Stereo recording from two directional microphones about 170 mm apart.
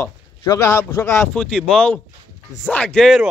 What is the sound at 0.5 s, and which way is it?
A man's voice, 15° left (ahead or behind).